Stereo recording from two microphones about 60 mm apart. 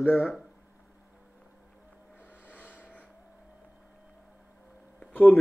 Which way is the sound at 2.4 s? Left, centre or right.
Left.